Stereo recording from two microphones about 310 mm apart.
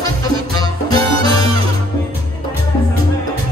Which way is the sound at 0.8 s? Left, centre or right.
Centre.